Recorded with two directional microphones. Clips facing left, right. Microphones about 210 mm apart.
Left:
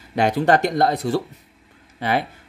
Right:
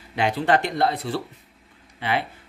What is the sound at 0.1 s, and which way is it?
Speech, 45° left (ahead or behind).